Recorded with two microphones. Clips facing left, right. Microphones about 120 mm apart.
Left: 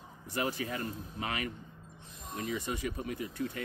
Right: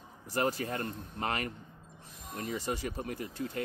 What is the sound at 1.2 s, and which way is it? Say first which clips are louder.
Speech: right 3 dB; 40° right (ahead or behind).